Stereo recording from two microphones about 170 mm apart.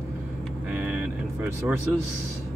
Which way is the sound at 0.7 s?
10° right (ahead or behind).